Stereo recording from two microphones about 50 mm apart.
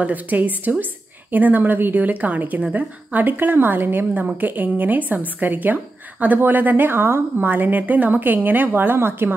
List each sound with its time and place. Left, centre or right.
0.0 s a woman's voice: right